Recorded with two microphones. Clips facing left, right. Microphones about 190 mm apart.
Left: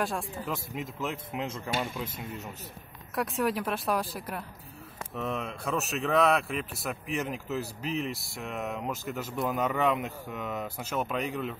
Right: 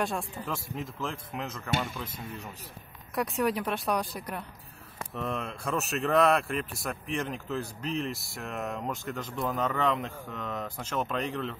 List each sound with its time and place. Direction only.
0.0 s speech: centre (ahead or behind)
1.4 s speech: 25° left (ahead or behind)
3.2 s speech: centre (ahead or behind)